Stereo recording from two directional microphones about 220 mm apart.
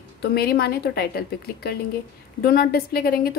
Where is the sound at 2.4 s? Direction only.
45° left (ahead or behind).